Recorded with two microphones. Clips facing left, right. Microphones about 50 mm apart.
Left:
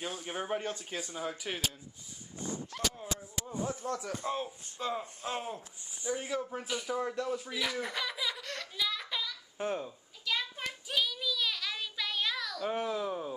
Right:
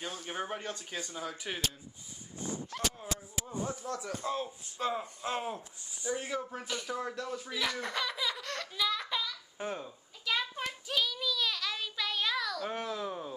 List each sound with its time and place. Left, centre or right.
0.0 s speech: centre
0.6 s speech: centre
3.0 s speech: centre
4.8 s speech: right
5.2 s speech: centre
6.0 s speech: centre
6.5 s giggle: centre
10.9 s a sound: centre